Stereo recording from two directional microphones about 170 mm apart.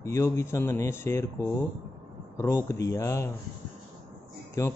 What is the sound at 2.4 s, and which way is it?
Speech, 15° left (ahead or behind).